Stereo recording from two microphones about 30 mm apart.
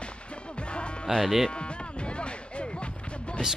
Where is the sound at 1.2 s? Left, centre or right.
Centre.